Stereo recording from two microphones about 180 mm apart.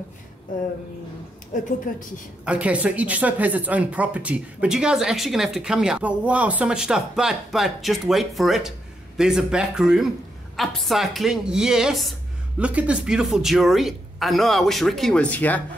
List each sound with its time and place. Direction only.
1.5 s a woman's voice: 45° left (ahead or behind)
2.4 s speech: 5° right (ahead or behind); by 15.6 s 10° left (ahead or behind)